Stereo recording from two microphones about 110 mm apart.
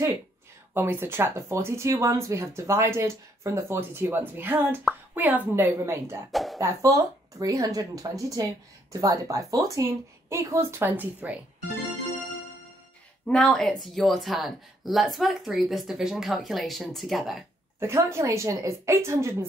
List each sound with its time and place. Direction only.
0.7 s a woman's voice: 20° right (ahead or behind)
6.3 s speech: centre (ahead or behind)
6.6 s speech: 30° right (ahead or behind)
13.3 s speech: 10° left (ahead or behind)
17.7 s speech: 25° right (ahead or behind)